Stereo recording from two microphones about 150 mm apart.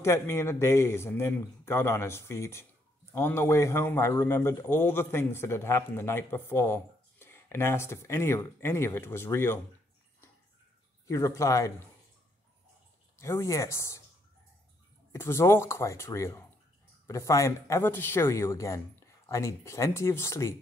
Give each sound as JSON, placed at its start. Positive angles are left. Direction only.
{"t": 0.0, "sound": "speech", "side_deg": 20}
{"t": 11.1, "sound": "speech", "side_deg": 20}
{"t": 13.2, "sound": "speech", "side_deg": 20}
{"t": 15.1, "sound": "speech", "side_deg": 20}